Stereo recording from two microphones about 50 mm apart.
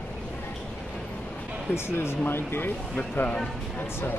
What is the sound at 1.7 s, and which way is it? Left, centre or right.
Speech, left.